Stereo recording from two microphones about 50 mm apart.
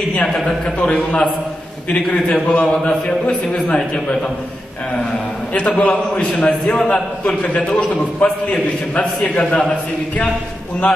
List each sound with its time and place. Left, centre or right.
0.3 s a man's voice: centre
0.7 s a man's voice: left
2.0 s a man's voice: centre
5.8 s a man's voice: left